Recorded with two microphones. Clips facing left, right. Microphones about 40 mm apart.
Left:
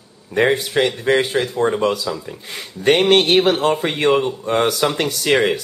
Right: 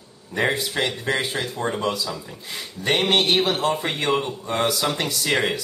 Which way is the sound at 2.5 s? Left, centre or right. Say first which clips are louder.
Left 7 dB; left.